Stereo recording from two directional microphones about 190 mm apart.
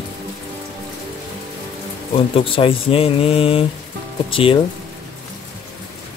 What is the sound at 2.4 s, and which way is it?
Speech, 30° left (ahead or behind).